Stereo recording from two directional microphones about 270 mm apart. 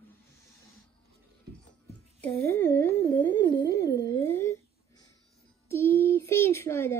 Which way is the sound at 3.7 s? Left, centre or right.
Left.